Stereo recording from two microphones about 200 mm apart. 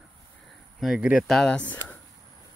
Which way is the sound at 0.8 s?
5° right (ahead or behind).